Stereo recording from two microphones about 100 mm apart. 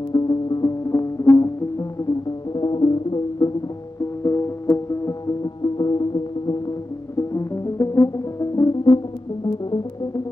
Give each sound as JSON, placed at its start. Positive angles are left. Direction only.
{"t": 0.1, "sound": "music", "side_deg": 45}
{"t": 2.5, "sound": "music", "side_deg": 50}
{"t": 4.2, "sound": "music", "side_deg": 30}
{"t": 7.2, "sound": "brass instrument", "side_deg": 30}